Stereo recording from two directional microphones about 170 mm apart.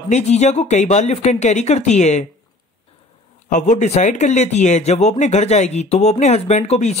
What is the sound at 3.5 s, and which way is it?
Speech, 45° left (ahead or behind).